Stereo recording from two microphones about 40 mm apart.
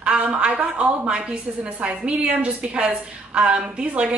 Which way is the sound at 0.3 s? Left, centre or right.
Right.